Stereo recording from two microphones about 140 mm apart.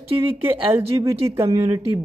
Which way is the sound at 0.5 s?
20° right (ahead or behind).